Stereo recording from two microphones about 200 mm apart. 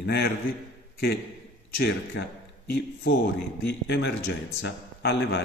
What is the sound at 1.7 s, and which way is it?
Speech, 55° left (ahead or behind).